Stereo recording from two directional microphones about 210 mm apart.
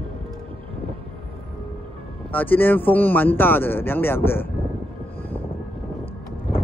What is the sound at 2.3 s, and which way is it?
Speech, 10° left (ahead or behind).